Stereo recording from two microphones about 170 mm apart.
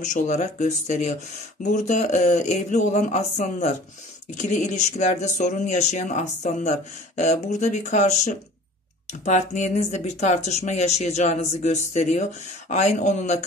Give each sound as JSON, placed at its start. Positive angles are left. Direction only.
{"t": 0.0, "sound": "speech", "side_deg": 45}